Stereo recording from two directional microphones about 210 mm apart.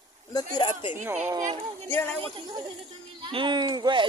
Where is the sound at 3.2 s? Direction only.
20° right (ahead or behind).